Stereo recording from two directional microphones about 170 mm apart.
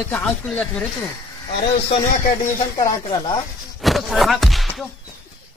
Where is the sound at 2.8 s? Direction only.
25° left (ahead or behind).